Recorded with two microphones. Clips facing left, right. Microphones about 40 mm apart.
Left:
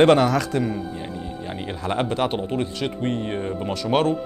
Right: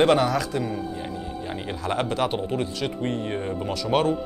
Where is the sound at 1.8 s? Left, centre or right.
Centre.